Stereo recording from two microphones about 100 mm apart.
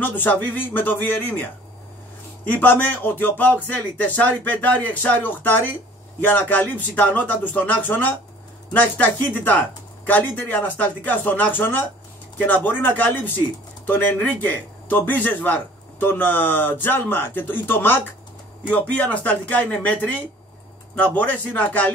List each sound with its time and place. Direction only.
0.0 s speech: 20° left (ahead or behind)